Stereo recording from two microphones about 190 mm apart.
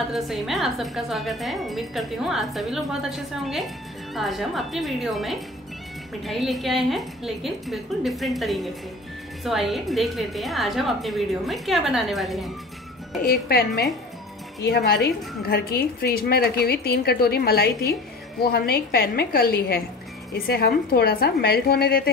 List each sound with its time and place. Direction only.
0.1 s speech: centre (ahead or behind)
13.2 s a woman's voice: 55° left (ahead or behind)